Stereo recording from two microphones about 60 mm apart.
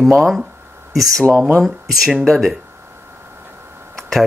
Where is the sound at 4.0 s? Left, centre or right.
Centre.